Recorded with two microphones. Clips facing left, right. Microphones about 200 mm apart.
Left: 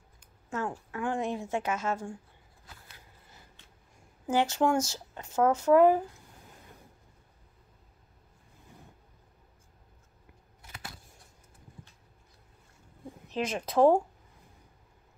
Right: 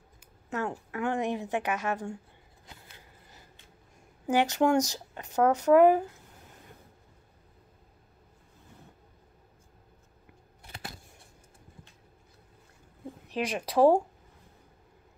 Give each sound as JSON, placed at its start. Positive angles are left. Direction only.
{"t": 0.5, "sound": "a woman's voice", "side_deg": -20}
{"t": 4.3, "sound": "a woman's voice", "side_deg": -15}
{"t": 13.3, "sound": "a woman's voice", "side_deg": -10}